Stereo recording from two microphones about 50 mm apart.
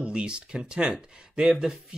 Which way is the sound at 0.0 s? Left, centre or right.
Right.